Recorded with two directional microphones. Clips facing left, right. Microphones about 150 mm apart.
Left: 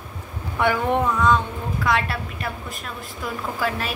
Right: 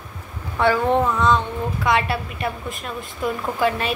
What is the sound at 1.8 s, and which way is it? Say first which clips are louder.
Speech: right 2 dB; centre (ahead or behind).